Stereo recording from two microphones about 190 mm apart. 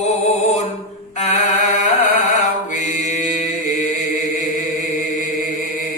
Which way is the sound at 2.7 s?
40° left (ahead or behind).